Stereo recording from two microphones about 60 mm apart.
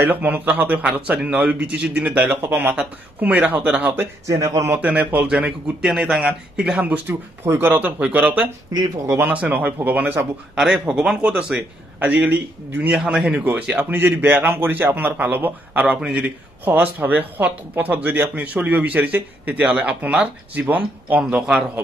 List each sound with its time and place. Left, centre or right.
0.0 s speech: right
2.4 s a man's voice: right
4.3 s speech: right
4.7 s speech: right
7.5 s speech: right
10.9 s speech: centre
12.9 s speech: centre
13.9 s a man's voice: right
15.8 s speech: right